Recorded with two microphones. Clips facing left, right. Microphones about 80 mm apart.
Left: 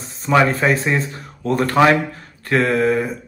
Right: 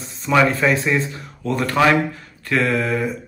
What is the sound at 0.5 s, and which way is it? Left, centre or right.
Speech, left.